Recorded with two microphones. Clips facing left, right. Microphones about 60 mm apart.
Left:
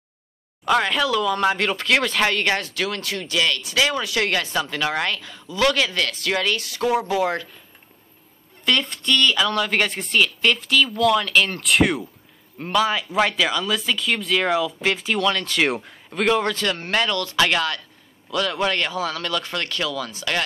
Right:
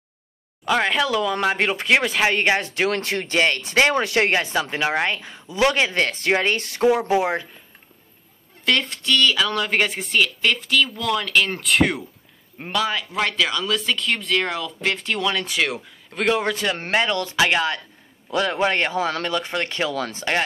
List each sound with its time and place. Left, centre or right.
0.7 s a man's voice: centre
2.3 s speech: right
8.6 s speech: centre
15.1 s a man's voice: centre
16.9 s speech: right